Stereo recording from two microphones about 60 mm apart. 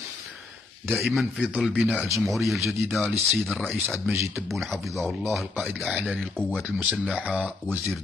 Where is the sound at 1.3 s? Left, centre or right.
Right.